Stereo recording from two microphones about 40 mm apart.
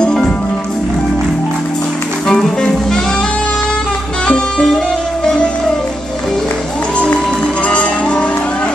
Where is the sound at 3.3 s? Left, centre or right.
Left.